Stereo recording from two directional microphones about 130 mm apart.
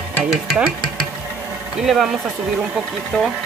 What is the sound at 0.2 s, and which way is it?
Speech, centre (ahead or behind).